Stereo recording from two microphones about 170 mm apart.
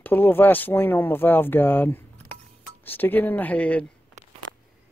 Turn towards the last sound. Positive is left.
turn(degrees=10)  # may be behind; listen again after turning